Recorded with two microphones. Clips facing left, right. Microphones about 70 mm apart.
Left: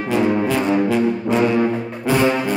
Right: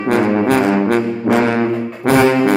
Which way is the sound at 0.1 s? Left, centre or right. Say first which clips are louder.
Right 4 dB; right.